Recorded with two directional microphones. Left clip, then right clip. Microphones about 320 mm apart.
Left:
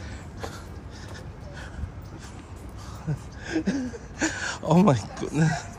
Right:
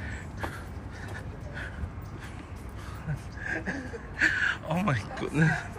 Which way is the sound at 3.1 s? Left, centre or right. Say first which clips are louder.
Left 1 dB; left.